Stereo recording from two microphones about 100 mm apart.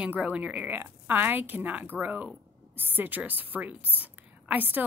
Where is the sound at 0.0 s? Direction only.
15° right (ahead or behind).